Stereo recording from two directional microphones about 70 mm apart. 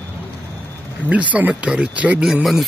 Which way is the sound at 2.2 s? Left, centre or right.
Centre.